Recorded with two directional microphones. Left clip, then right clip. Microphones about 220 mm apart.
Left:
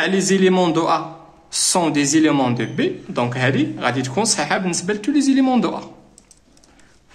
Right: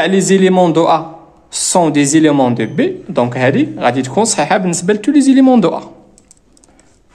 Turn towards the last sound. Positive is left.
turn(degrees=-30)  # may be behind; listen again after turning